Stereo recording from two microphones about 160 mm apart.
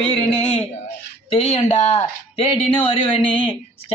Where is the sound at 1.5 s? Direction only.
40° left (ahead or behind).